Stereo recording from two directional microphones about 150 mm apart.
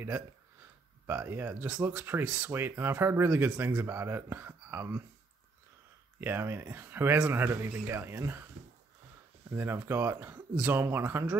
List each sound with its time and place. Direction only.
1.0 s speech: 15° right (ahead or behind)
6.2 s speech: 15° right (ahead or behind)
9.5 s speech: 15° right (ahead or behind)